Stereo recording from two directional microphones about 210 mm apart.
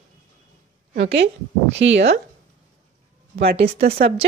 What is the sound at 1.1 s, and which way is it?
Speech, 55° right (ahead or behind).